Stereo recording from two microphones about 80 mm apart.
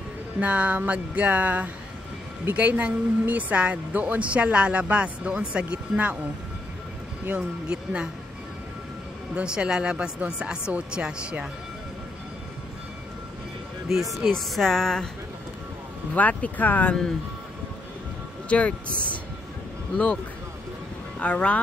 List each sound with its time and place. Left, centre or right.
0.4 s speech: centre
7.2 s speech: centre
9.3 s speech: centre
13.9 s speech: centre
16.2 s speech: centre
18.5 s speech: centre
21.2 s speech: centre